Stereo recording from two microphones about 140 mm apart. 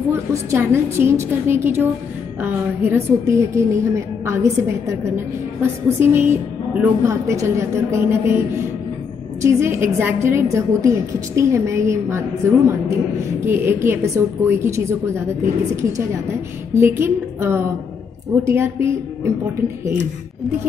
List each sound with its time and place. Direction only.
0.1 s a woman's voice: 20° right (ahead or behind)
16.7 s a woman's voice: 15° right (ahead or behind)